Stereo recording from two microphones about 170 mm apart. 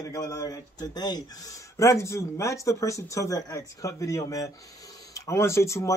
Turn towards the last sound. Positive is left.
turn(degrees=15)  # may be behind; listen again after turning